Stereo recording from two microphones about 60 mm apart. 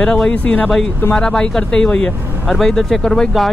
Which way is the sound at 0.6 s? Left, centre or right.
Centre.